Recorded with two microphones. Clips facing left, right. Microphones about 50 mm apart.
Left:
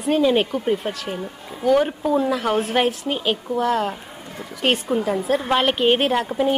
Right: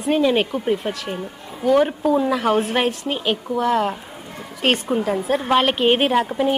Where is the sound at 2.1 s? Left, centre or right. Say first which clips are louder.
Even; centre.